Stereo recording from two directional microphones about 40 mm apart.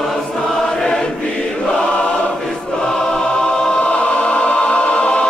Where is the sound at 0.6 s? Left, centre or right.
Centre.